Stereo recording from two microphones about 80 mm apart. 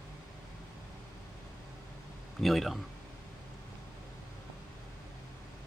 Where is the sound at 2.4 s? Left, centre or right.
Centre.